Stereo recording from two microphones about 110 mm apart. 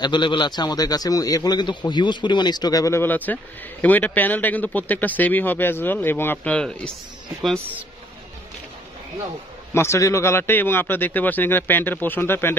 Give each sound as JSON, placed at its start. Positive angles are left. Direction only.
{"t": 0.0, "sound": "a man's voice", "side_deg": 45}
{"t": 9.8, "sound": "speech", "side_deg": 25}